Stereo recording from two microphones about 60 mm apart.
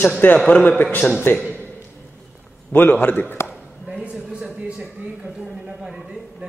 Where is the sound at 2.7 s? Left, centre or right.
Left.